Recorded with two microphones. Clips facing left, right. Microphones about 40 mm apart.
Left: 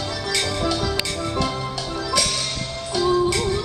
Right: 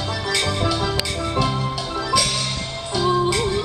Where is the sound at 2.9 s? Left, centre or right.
Centre.